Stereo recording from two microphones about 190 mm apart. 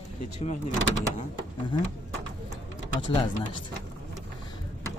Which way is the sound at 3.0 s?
30° left (ahead or behind).